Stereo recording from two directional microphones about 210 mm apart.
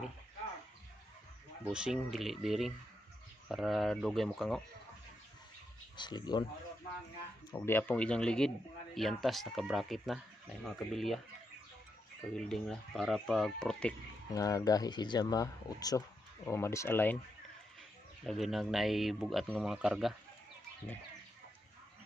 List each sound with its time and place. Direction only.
1.7 s speech: 5° right (ahead or behind)
5.9 s speech: 20° left (ahead or behind)
7.5 s speech: 10° left (ahead or behind)
12.4 s speech: centre (ahead or behind)
14.3 s speech: 15° left (ahead or behind)
18.2 s speech: centre (ahead or behind)